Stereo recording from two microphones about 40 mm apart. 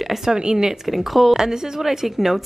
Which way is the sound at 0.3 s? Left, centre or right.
Centre.